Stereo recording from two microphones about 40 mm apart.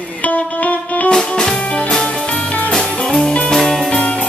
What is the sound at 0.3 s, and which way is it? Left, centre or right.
Music, left.